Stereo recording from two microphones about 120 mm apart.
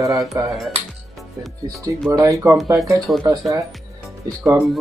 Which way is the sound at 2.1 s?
25° right (ahead or behind).